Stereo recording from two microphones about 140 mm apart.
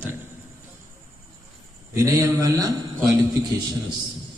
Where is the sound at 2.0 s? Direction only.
25° right (ahead or behind).